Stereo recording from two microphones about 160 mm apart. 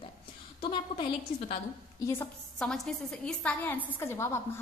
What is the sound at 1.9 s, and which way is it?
Speech, 15° left (ahead or behind).